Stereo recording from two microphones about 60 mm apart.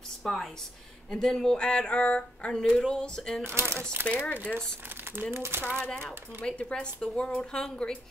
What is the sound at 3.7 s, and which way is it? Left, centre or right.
Speech, right.